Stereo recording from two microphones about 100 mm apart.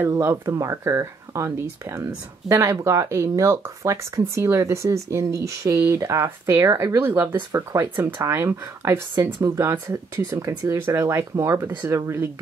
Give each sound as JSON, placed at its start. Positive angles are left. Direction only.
{"t": 0.1, "sound": "speech", "side_deg": -30}
{"t": 7.0, "sound": "speech", "side_deg": -20}